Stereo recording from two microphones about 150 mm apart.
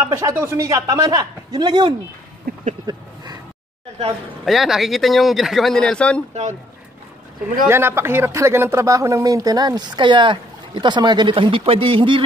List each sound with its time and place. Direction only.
0.0 s speech: 20° right (ahead or behind)
2.5 s a sound: 85° right
2.9 s speech: 30° right (ahead or behind)
4.5 s speech: centre (ahead or behind)
7.6 s speech: 15° right (ahead or behind); by 12.2 s 35° right (ahead or behind)